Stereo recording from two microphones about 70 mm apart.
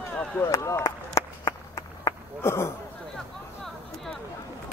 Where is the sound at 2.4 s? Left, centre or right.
Left.